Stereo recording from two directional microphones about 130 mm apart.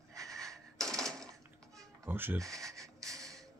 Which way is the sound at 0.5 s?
5° left (ahead or behind).